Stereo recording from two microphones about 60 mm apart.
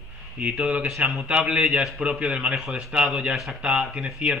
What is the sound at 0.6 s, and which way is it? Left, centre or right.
Speech, centre.